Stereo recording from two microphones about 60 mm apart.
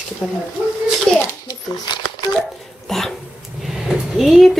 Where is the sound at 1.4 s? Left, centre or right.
Left.